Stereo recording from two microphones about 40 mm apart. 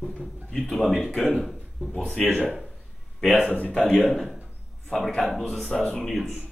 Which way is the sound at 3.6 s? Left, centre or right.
Left.